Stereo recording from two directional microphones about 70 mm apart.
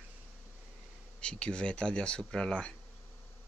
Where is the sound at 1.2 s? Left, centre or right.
Centre.